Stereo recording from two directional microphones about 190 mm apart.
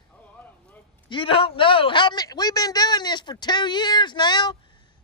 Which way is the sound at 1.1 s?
30° left (ahead or behind).